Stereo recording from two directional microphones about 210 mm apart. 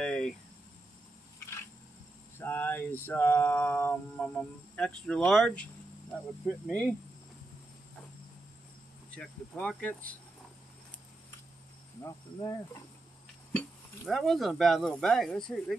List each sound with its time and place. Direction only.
0.0 s vehicle: 5° left (ahead or behind)
2.3 s a sound: 10° left (ahead or behind)
6.1 s speech: 5° left (ahead or behind)
9.1 s speech: 5° left (ahead or behind)
12.0 s speech: 20° left (ahead or behind)
13.5 s speech: 5° left (ahead or behind)